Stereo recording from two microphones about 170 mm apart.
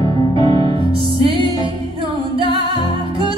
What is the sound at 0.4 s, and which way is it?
Music, 30° right (ahead or behind).